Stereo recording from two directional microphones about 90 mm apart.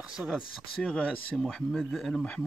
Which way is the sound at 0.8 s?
10° left (ahead or behind).